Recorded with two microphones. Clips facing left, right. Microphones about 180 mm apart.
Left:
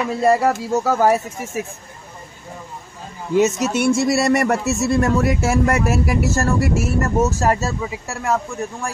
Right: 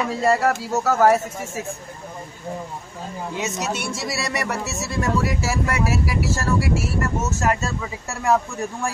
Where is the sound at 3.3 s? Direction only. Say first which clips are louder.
Left 11 dB; 50° left (ahead or behind).